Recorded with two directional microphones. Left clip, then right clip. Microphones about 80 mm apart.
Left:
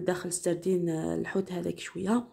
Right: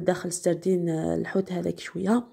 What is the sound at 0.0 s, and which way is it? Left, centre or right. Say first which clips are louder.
Speech: right 5 dB; right.